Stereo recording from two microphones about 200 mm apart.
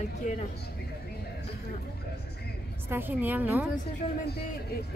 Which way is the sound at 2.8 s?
10° right (ahead or behind).